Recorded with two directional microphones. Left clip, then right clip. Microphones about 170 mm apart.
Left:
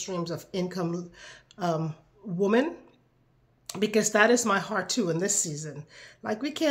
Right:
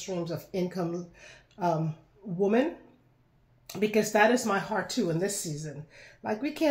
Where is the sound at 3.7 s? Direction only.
15° left (ahead or behind).